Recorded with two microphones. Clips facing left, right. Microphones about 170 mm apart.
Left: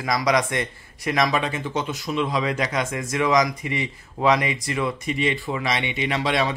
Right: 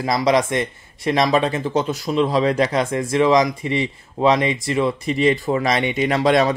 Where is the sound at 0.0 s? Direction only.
25° right (ahead or behind).